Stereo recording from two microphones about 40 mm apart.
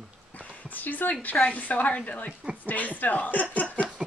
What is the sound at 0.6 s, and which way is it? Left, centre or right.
A woman's voice, left.